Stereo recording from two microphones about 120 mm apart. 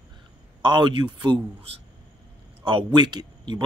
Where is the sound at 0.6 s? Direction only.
40° right (ahead or behind).